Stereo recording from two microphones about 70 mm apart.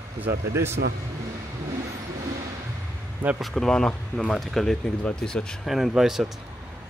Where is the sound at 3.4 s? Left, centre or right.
Centre.